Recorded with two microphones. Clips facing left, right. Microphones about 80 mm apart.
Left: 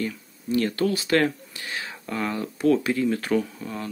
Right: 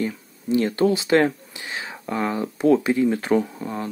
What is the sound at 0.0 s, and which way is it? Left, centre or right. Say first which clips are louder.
Speech: right 3 dB; right.